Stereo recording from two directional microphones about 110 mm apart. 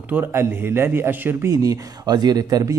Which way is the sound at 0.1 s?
20° right (ahead or behind).